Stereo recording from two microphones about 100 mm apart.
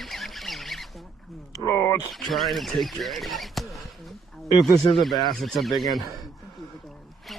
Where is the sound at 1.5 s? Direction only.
35° left (ahead or behind).